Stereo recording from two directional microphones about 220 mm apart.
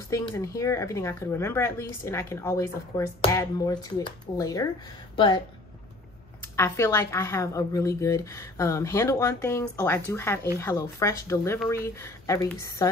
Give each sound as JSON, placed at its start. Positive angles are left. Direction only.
{"t": 0.1, "sound": "speech", "side_deg": 15}
{"t": 6.5, "sound": "speech", "side_deg": 10}